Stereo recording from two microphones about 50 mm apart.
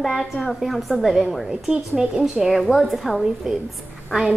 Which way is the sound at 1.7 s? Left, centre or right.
Centre.